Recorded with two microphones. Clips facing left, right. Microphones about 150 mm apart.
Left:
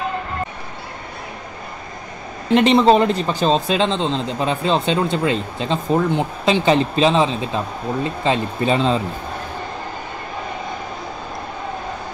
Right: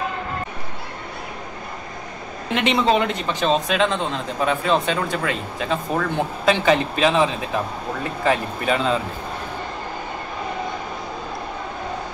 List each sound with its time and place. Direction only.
2.5 s speech: 35° left (ahead or behind)